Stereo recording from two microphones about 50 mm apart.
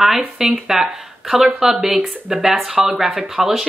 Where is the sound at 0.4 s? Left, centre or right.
Centre.